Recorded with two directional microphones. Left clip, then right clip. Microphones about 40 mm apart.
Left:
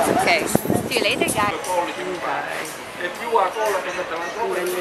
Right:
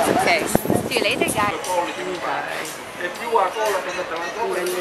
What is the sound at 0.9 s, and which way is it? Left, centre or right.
Speech, centre.